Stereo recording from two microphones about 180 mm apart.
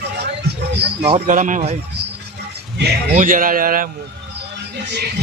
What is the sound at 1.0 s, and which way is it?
Speech, 40° right (ahead or behind).